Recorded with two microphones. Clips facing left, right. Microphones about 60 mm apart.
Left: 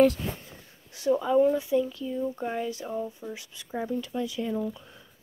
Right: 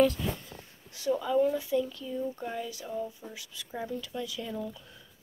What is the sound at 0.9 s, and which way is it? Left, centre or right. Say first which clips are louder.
Speech: left 4 dB; left.